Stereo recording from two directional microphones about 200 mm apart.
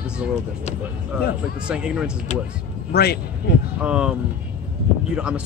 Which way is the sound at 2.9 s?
55° left (ahead or behind).